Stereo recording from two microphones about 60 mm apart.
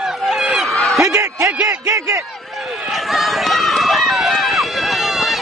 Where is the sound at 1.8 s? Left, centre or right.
Right.